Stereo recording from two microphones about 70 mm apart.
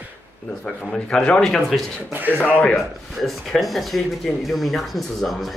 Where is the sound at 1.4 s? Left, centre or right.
Centre.